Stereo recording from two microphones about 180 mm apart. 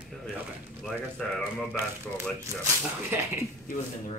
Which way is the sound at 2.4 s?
15° right (ahead or behind).